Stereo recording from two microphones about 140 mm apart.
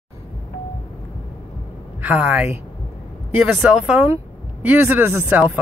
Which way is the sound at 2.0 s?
10° right (ahead or behind).